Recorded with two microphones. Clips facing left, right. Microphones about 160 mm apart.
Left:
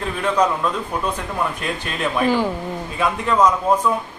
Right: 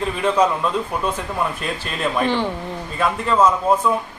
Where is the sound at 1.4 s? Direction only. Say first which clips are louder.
Left 1 dB; centre (ahead or behind).